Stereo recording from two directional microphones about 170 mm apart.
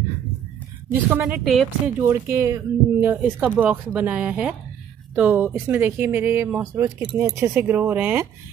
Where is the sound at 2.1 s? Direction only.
15° right (ahead or behind).